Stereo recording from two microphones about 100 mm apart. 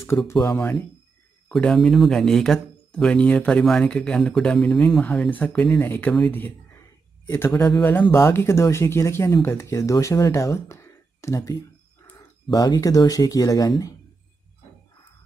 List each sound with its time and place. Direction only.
0.3 s speech: 25° left (ahead or behind)
0.6 s speech: 10° left (ahead or behind); by 11.5 s 30° left (ahead or behind)
12.4 s speech: 40° left (ahead or behind)